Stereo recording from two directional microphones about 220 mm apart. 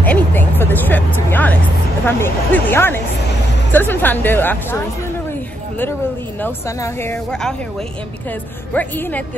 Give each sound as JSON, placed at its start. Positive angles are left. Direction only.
{"t": 0.0, "sound": "speech", "side_deg": 10}
{"t": 6.4, "sound": "speech", "side_deg": 10}
{"t": 8.7, "sound": "speech", "side_deg": 10}